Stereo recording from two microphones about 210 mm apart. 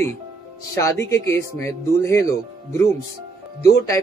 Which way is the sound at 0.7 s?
15° left (ahead or behind).